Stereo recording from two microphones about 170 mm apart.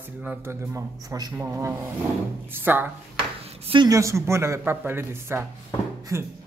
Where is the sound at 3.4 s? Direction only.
35° right (ahead or behind).